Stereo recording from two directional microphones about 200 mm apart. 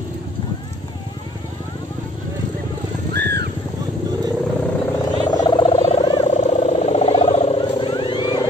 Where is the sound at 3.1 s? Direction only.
55° right (ahead or behind).